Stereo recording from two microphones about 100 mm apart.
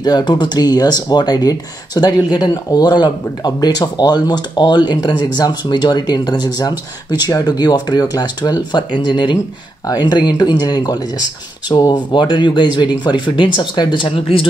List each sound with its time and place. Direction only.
0.0 s speech: 45° left (ahead or behind); by 14.5 s 65° left (ahead or behind)